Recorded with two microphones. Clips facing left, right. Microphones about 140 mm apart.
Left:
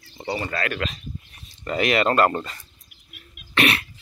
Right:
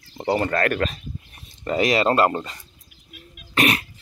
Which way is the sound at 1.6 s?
35° right (ahead or behind).